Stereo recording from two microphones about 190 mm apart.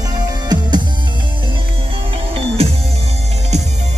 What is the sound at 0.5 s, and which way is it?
Music, 20° right (ahead or behind).